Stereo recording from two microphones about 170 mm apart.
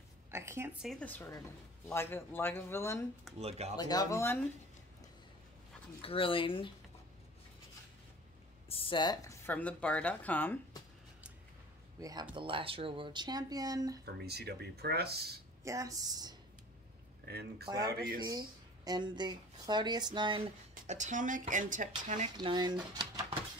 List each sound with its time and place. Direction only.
0.3 s a sound: 15° right (ahead or behind)
0.8 s speech: 10° left (ahead or behind)
3.3 s speech: 35° right (ahead or behind)
3.7 s speech: 25° left (ahead or behind)
6.0 s speech: 30° left (ahead or behind)
8.6 s speech: 35° left (ahead or behind); by 10.6 s 10° left (ahead or behind)
12.0 s speech: 20° right (ahead or behind)
14.0 s speech: 70° right (ahead or behind)
15.6 s speech: 20° right (ahead or behind)
17.3 s speech: 70° right (ahead or behind)
17.6 s speech: 20° right (ahead or behind)
17.9 s speech: 65° right (ahead or behind)
18.9 s speech: 25° right (ahead or behind); by 22.3 s 50° right (ahead or behind)
22.4 s speech: 25° right (ahead or behind)